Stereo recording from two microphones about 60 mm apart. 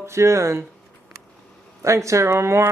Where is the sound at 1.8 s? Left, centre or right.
Right.